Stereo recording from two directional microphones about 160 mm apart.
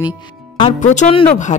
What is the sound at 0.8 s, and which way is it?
Speech, 50° left (ahead or behind).